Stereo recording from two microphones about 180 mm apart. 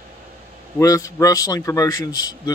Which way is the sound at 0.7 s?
20° left (ahead or behind).